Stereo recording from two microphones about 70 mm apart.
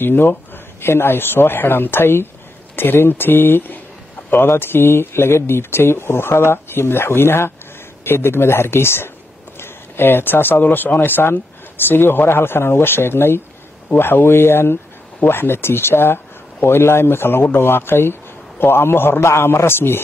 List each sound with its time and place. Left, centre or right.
0.0 s speech: left